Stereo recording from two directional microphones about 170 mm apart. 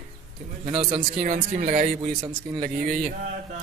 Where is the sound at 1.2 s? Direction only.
45° right (ahead or behind).